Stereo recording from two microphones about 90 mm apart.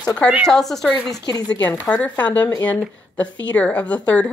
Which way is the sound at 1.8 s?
15° left (ahead or behind).